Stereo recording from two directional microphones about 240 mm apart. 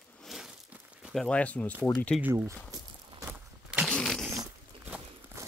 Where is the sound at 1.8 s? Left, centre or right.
Centre.